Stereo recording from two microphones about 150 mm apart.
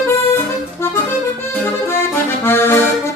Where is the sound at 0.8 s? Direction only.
15° left (ahead or behind).